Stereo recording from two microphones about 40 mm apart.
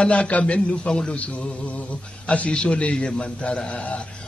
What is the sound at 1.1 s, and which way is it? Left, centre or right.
Music, left.